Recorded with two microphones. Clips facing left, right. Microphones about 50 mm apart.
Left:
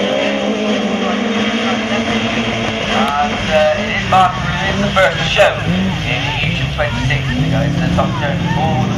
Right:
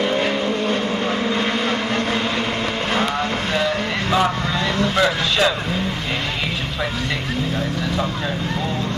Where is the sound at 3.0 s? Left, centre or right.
Left.